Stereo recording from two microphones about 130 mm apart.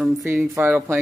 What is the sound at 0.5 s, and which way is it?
Speech, 15° right (ahead or behind).